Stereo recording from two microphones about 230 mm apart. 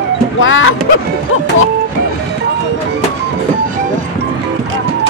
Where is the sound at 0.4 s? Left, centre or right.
Left.